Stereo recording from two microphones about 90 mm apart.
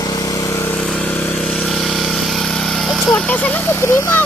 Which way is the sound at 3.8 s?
30° left (ahead or behind).